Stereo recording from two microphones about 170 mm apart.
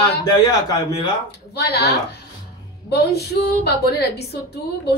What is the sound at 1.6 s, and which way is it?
Female singing, 70° left (ahead or behind).